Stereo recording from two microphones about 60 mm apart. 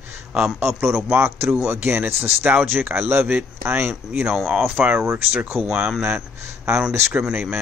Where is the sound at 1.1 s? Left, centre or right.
Right.